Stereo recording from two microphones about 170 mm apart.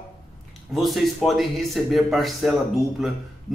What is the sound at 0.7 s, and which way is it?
A man's voice, centre (ahead or behind).